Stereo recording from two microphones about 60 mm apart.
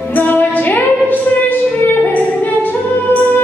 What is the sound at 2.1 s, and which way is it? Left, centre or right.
Female singing, left.